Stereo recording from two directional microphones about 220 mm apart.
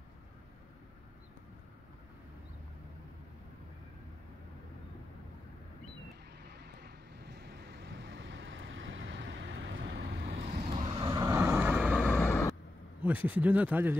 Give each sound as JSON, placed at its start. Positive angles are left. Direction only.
{"t": 6.4, "sound": "vehicle", "side_deg": -50}
{"t": 10.6, "sound": "vehicle", "side_deg": -30}
{"t": 11.0, "sound": "vehicle", "side_deg": -15}
{"t": 11.9, "sound": "vehicle", "side_deg": 5}
{"t": 13.0, "sound": "speech", "side_deg": -5}